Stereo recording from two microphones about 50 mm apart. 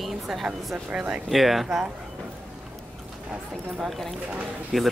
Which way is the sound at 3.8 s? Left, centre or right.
Centre.